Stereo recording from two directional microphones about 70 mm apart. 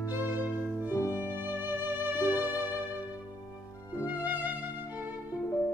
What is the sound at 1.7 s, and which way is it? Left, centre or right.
Music, right.